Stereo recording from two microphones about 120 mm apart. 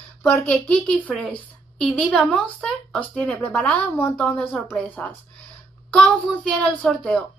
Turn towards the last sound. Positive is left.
turn(degrees=5)  # may be behind; listen again after turning